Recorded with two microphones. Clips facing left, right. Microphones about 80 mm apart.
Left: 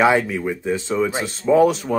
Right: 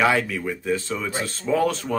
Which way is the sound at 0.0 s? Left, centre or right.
Left.